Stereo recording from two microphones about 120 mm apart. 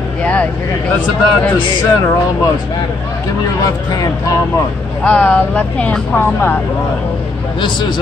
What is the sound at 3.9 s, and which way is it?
Speech, 30° left (ahead or behind).